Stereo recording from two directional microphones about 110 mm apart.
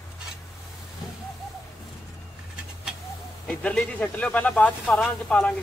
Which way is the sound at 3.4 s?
10° left (ahead or behind).